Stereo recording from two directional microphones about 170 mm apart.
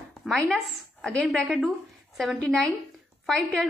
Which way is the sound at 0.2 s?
Centre (ahead or behind).